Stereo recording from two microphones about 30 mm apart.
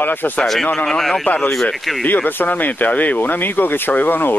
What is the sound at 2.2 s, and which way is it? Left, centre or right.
Speech, left.